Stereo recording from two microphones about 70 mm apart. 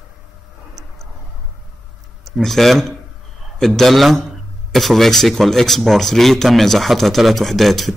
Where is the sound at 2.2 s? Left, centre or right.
Centre.